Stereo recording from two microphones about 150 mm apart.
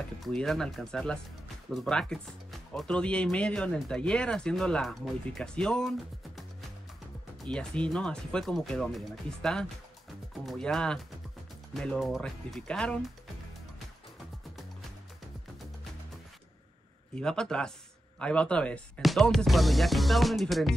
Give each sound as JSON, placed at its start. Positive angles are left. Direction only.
{"t": 0.2, "sound": "speech", "side_deg": 5}
{"t": 7.4, "sound": "speech", "side_deg": 5}
{"t": 17.1, "sound": "speech", "side_deg": 5}